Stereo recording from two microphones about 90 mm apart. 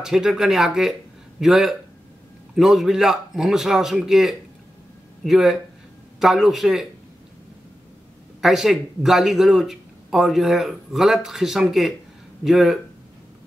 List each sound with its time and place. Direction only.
0.0 s speech: 5° right (ahead or behind)
8.4 s speech: 5° right (ahead or behind)